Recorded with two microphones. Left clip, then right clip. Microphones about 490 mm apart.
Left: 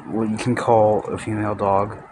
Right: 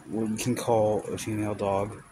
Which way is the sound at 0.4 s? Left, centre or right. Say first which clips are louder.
Left 9 dB; right.